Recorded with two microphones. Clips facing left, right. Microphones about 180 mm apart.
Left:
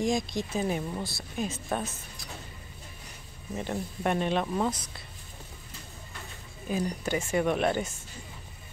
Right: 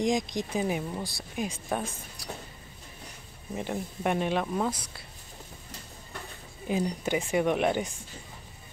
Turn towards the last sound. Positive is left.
turn(degrees=-15)  # may be behind; listen again after turning